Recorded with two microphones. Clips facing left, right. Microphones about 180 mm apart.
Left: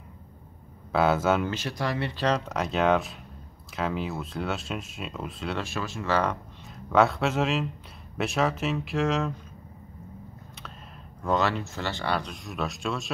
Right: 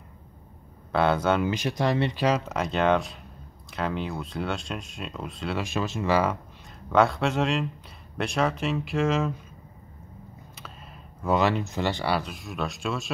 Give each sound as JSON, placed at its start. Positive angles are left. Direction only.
{"t": 0.9, "sound": "speech", "side_deg": 5}
{"t": 1.5, "sound": "speech", "side_deg": -15}
{"t": 2.1, "sound": "speech", "side_deg": -10}
{"t": 5.6, "sound": "speech", "side_deg": -20}
{"t": 6.9, "sound": "speech", "side_deg": 0}
{"t": 11.2, "sound": "speech", "side_deg": -15}